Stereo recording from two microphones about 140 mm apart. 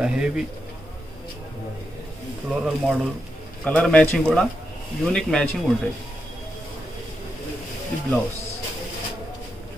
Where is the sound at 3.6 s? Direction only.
10° left (ahead or behind).